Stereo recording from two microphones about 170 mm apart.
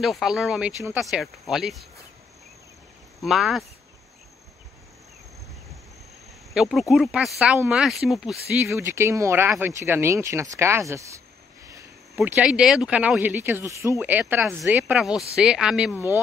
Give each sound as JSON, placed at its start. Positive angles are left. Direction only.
{"t": 0.0, "sound": "speech", "side_deg": 0}
{"t": 3.3, "sound": "speech", "side_deg": 0}
{"t": 6.5, "sound": "speech", "side_deg": 0}
{"t": 8.6, "sound": "speech", "side_deg": -15}
{"t": 12.3, "sound": "speech", "side_deg": -5}